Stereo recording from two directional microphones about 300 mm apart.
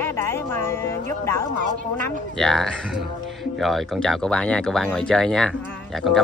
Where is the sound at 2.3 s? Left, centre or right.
Centre.